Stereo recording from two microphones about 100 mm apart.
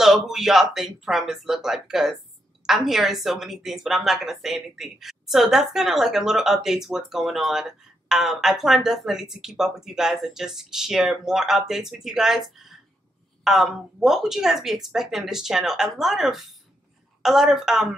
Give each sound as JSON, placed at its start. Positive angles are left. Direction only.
{"t": 0.0, "sound": "a woman's voice", "side_deg": -5}